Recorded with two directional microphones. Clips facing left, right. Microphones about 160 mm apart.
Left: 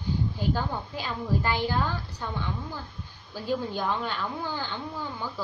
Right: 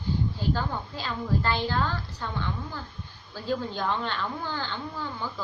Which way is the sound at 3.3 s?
10° left (ahead or behind).